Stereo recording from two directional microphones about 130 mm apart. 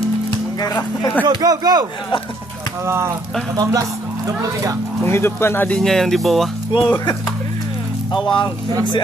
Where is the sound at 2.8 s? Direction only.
20° right (ahead or behind).